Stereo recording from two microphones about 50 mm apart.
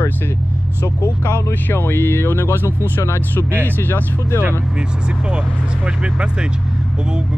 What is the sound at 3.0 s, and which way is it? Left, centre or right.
Speech, left.